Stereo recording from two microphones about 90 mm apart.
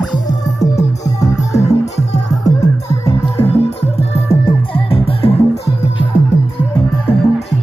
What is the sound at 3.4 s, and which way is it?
Music, 90° left.